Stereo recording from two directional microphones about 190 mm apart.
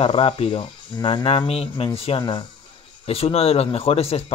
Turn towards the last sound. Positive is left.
turn(degrees=30)  # may be behind; listen again after turning